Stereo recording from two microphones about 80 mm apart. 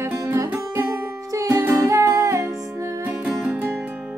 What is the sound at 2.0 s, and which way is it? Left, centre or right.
Music, right.